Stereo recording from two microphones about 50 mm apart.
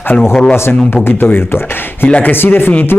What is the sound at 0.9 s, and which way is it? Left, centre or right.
Speech, left.